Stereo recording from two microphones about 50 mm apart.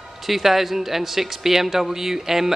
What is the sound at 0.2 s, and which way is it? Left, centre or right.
Speech, centre.